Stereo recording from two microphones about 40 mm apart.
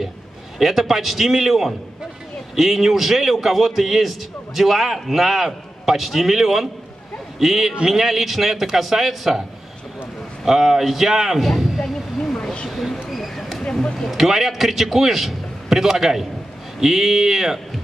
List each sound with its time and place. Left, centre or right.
0.6 s a man's voice: centre
10.4 s a man's voice: centre
12.2 s a sound: centre
12.6 s a sound: centre
13.7 s speech: centre
14.0 s a man's voice: centre